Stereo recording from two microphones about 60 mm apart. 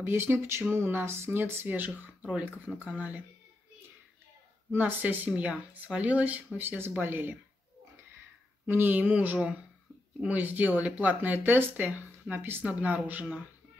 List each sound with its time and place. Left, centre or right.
0.0 s speech: right
2.0 s speech: right
4.7 s speech: right
8.6 s speech: right
8.9 s speech: right